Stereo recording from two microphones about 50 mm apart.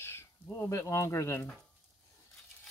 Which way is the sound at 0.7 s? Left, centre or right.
Left.